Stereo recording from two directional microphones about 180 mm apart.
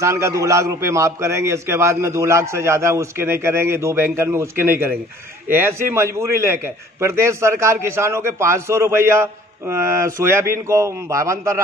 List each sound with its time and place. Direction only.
0.0 s a man's voice: 15° right (ahead or behind)